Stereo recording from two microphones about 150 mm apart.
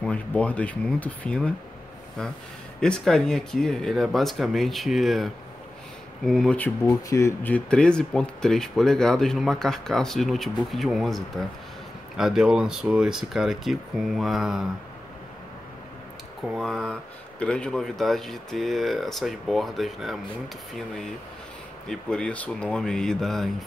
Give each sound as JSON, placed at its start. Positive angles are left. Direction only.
{"t": 0.0, "sound": "speech", "side_deg": 10}
{"t": 2.8, "sound": "speech", "side_deg": 5}
{"t": 7.1, "sound": "speech", "side_deg": 20}
{"t": 7.4, "sound": "speech", "side_deg": 10}
{"t": 16.4, "sound": "speech", "side_deg": 0}